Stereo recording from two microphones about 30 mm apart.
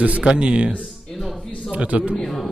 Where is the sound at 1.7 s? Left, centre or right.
Right.